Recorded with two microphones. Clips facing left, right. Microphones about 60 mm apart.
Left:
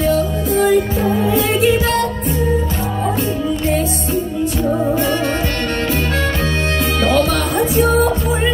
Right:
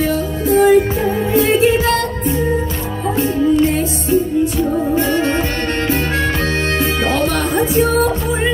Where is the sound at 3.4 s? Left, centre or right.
Centre.